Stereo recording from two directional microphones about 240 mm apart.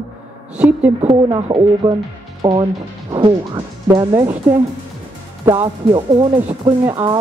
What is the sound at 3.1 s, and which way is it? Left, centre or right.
Speech, centre.